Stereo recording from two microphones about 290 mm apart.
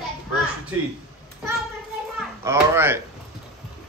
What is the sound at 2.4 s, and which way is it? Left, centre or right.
Speech, centre.